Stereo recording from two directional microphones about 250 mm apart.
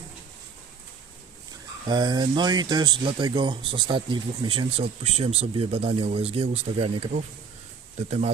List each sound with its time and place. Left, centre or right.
1.9 s speech: centre